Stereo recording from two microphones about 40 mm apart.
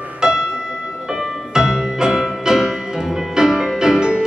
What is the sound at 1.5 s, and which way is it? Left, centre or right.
Music, centre.